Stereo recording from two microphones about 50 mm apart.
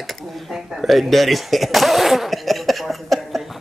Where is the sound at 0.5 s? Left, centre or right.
Centre.